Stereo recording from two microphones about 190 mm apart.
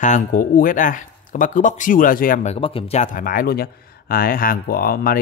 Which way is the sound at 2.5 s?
30° left (ahead or behind).